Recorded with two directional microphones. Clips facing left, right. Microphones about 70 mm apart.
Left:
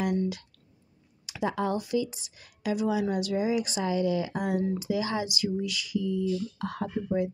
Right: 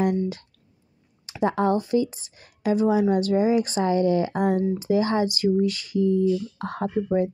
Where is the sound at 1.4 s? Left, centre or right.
Right.